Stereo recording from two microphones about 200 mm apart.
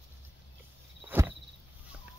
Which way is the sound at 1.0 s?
10° right (ahead or behind).